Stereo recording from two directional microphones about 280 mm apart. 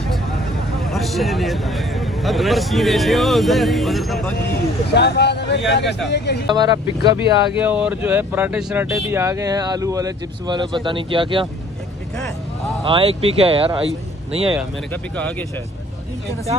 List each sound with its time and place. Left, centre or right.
0.9 s speech: centre
4.9 s speech: left
6.5 s speech: centre
12.8 s speech: centre